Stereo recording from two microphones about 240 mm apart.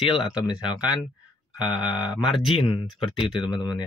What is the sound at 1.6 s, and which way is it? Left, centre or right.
Speech, centre.